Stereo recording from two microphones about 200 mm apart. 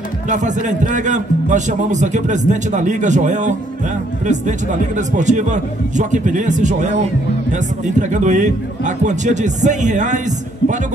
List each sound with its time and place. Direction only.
0.3 s a man's voice: 35° right (ahead or behind)